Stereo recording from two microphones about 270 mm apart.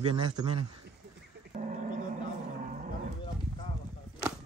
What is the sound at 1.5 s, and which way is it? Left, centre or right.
Wild animals, right.